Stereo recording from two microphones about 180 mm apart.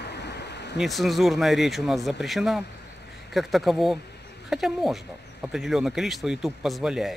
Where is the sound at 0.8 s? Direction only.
Centre (ahead or behind).